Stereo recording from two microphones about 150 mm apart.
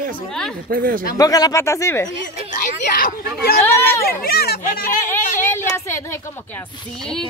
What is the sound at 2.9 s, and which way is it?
Speech, 80° left.